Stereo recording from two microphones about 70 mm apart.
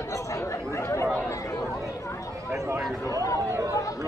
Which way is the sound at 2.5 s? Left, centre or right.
Right.